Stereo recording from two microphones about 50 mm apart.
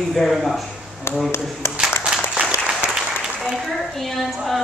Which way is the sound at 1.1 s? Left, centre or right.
Left.